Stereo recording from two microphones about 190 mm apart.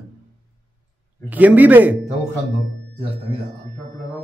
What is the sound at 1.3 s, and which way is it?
Speech, 10° right (ahead or behind).